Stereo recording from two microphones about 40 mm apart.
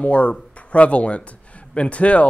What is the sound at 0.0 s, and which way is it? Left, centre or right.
Speech, left.